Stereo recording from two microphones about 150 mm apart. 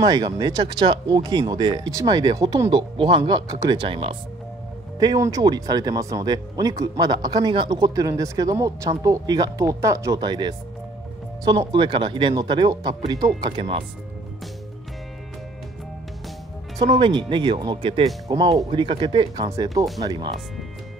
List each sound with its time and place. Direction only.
0.0 s speech: 25° right (ahead or behind)
4.9 s speech: 25° right (ahead or behind)
16.7 s speech: 35° right (ahead or behind)